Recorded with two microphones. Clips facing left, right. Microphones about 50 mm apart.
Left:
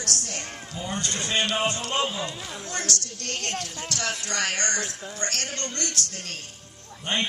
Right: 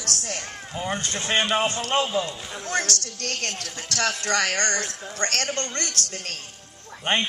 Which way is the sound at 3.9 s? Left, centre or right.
Right.